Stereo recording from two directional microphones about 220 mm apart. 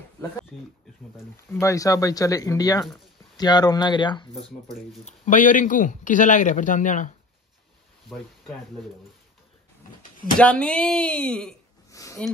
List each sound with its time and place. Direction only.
1.1 s speech: 10° left (ahead or behind)
5.0 s a man's voice: 35° left (ahead or behind)
10.4 s speech: 5° left (ahead or behind)
11.9 s a sound: 15° left (ahead or behind)